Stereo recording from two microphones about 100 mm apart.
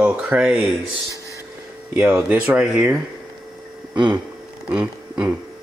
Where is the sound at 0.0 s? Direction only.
10° right (ahead or behind).